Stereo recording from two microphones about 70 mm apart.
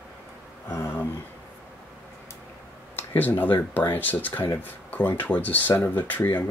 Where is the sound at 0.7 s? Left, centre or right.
Left.